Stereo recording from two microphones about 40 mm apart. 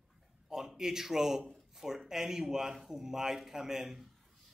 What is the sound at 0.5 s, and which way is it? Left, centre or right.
A man's voice, centre.